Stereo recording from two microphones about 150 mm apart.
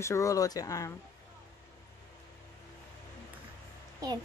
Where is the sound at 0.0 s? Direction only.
20° left (ahead or behind).